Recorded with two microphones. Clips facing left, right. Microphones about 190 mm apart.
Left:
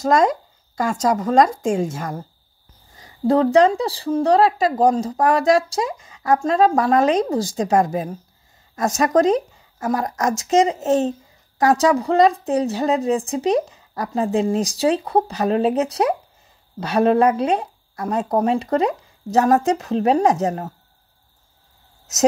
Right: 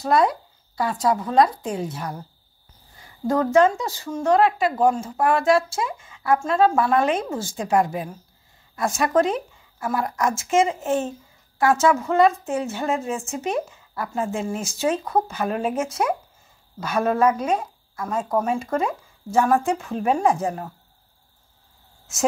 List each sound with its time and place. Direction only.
0.2 s speech: 45° left (ahead or behind)
3.0 s a woman's voice: 35° left (ahead or behind)